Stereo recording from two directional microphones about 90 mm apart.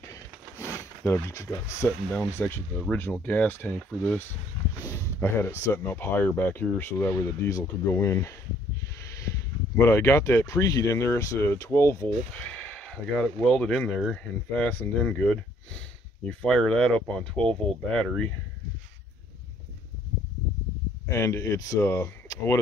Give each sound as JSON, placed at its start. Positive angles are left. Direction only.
{"t": 0.0, "sound": "a sound", "side_deg": 35}
{"t": 1.1, "sound": "speech", "side_deg": 30}
{"t": 2.1, "sound": "speech", "side_deg": 20}
{"t": 5.2, "sound": "speech", "side_deg": 25}
{"t": 9.8, "sound": "speech", "side_deg": 30}
{"t": 12.4, "sound": "a sound", "side_deg": 15}
{"t": 13.4, "sound": "speech", "side_deg": 10}
{"t": 16.3, "sound": "speech", "side_deg": 10}
{"t": 21.1, "sound": "speech", "side_deg": 35}